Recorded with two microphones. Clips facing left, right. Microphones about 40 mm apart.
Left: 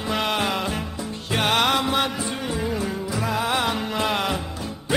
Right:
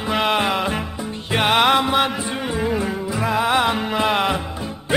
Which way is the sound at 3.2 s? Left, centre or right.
Centre.